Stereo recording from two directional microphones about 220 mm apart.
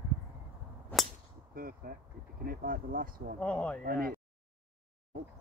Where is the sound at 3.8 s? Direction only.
40° right (ahead or behind).